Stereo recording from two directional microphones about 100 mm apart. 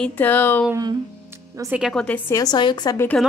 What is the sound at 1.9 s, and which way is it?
Speech, 5° left (ahead or behind).